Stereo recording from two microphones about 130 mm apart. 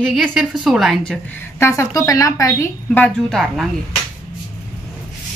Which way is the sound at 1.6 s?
20° left (ahead or behind).